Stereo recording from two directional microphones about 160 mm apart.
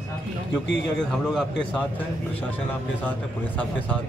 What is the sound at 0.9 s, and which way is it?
Speech, 5° left (ahead or behind).